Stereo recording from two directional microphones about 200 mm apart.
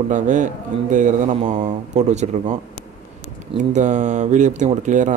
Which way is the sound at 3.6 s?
35° right (ahead or behind).